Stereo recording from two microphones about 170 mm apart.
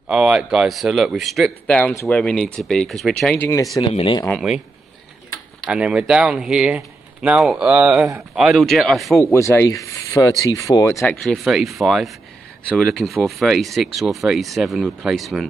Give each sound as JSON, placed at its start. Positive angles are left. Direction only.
{"t": 0.1, "sound": "speech", "side_deg": -5}
{"t": 3.8, "sound": "speech", "side_deg": 30}
{"t": 5.7, "sound": "speech", "side_deg": -5}
{"t": 9.2, "sound": "speech", "side_deg": 15}
{"t": 11.0, "sound": "speech", "side_deg": 0}